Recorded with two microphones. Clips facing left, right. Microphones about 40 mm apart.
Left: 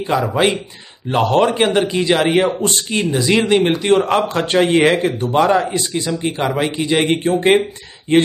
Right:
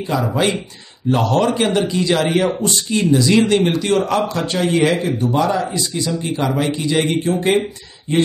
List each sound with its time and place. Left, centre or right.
0.3 s a man's voice: left